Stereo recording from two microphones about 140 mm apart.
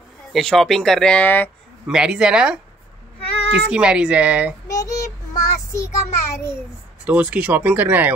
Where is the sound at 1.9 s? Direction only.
5° right (ahead or behind).